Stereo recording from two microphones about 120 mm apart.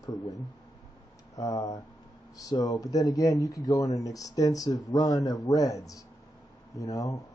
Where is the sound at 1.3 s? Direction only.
30° left (ahead or behind).